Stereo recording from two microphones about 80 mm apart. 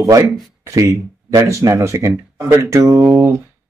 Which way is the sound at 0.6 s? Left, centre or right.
Right.